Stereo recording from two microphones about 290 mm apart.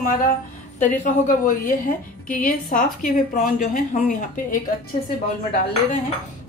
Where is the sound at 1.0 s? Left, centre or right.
Left.